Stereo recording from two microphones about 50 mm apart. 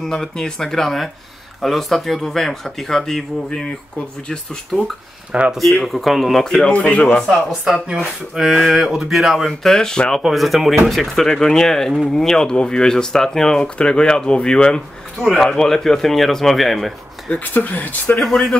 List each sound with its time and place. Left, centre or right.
0.0 s speech: centre
3.4 s a man's voice: centre
5.3 s speech: right
5.9 s speech: centre
6.7 s a man's voice: left
8.0 s speech: centre
9.5 s speech: centre
10.2 s speech: centre
15.1 s speech: centre
17.3 s speech: left
18.1 s speech: centre